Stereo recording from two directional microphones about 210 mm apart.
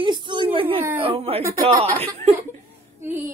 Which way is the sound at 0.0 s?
20° right (ahead or behind).